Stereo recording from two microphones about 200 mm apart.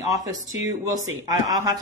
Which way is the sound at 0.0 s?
15° right (ahead or behind).